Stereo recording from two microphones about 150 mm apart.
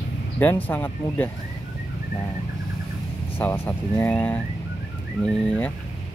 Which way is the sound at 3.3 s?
15° left (ahead or behind).